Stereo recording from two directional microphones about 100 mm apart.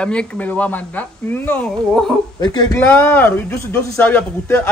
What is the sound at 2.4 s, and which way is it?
Speech, 40° left (ahead or behind).